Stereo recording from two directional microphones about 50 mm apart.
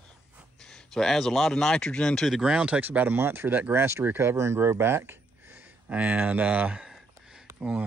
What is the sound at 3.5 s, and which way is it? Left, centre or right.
Speech, right.